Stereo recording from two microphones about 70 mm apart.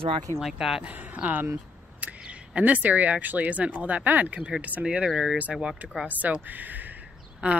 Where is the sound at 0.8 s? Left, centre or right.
Right.